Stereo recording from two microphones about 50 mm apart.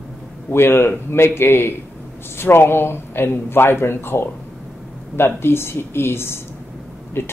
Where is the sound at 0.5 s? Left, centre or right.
Left.